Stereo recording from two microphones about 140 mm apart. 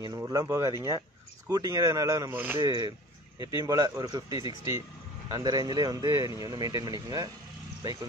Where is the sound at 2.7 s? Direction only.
30° right (ahead or behind).